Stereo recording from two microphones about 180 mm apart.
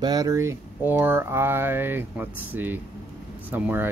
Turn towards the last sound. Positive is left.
turn(degrees=-10)  # may be behind; listen again after turning